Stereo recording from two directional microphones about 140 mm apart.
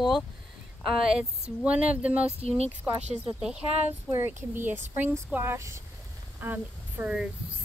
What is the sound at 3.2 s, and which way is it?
Speech, 5° right (ahead or behind).